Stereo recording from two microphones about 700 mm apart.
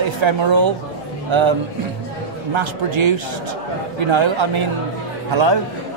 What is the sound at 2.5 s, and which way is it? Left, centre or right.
A woman's voice, right.